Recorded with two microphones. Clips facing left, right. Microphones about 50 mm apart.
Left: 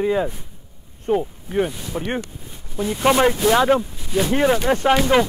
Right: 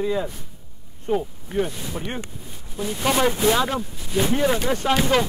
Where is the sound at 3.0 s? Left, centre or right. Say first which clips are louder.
Left 5 dB; left.